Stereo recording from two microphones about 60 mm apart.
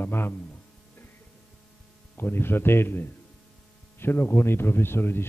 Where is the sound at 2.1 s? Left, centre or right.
Left.